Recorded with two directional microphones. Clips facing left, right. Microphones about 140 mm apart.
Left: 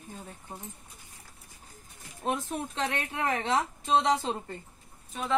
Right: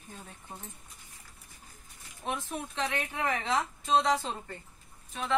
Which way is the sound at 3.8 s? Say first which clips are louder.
Even; 20° left (ahead or behind).